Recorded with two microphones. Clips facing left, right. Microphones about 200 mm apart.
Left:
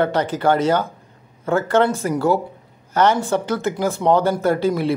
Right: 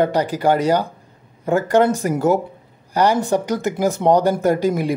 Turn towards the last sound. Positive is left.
turn(degrees=-15)  # may be behind; listen again after turning